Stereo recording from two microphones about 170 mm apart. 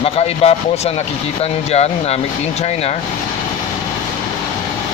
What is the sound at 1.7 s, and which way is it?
Speech, 40° left (ahead or behind).